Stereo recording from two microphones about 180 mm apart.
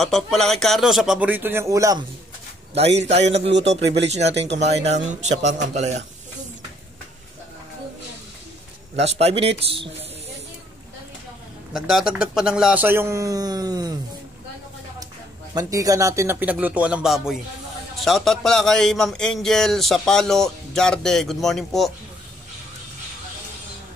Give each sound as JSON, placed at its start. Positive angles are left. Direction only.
{"t": 0.0, "sound": "a man's voice", "side_deg": 0}
{"t": 2.7, "sound": "a man's voice", "side_deg": -35}
{"t": 9.0, "sound": "a man's voice", "side_deg": -35}
{"t": 11.7, "sound": "a man's voice", "side_deg": 0}
{"t": 15.5, "sound": "a man's voice", "side_deg": -20}